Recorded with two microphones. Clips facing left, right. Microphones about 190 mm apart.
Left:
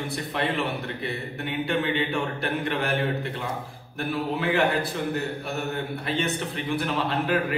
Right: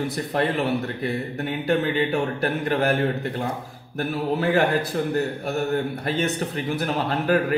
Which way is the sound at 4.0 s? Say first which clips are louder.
Right 3 dB; 45° right (ahead or behind).